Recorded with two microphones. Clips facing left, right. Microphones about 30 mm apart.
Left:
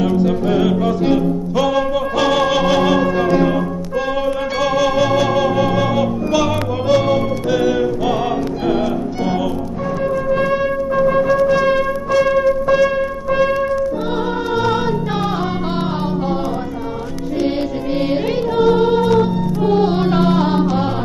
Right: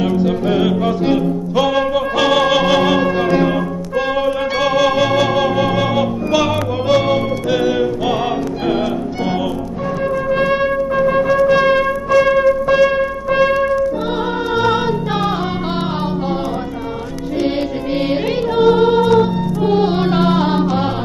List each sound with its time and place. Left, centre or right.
0.0 s music: centre
10.3 s music: right
10.7 s music: right
14.5 s music: right
17.9 s music: centre